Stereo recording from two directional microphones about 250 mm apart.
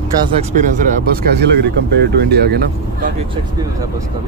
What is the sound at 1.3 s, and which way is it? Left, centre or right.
Speech, right.